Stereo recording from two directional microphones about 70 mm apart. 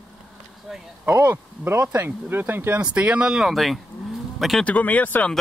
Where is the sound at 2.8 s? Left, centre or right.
Centre.